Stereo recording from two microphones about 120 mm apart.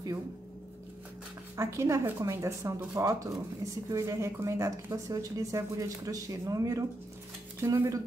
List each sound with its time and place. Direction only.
1.6 s speech: 25° right (ahead or behind)